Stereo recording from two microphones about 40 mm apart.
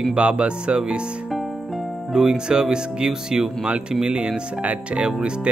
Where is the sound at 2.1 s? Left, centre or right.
Centre.